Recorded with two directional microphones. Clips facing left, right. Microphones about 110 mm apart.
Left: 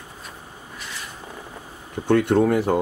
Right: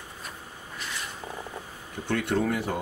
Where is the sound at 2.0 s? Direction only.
45° left (ahead or behind).